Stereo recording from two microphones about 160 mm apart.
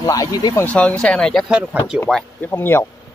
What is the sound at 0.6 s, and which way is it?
Speech, 5° left (ahead or behind).